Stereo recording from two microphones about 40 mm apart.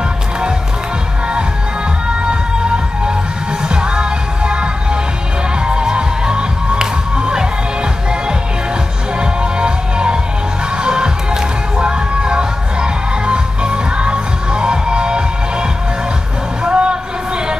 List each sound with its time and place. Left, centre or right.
2.0 s music: right
9.2 s music: right
16.6 s music: right